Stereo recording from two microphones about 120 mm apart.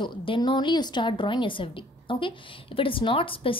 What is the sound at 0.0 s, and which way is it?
A woman's voice, 45° left (ahead or behind).